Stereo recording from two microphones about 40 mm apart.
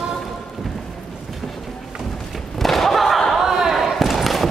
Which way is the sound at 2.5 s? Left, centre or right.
Centre.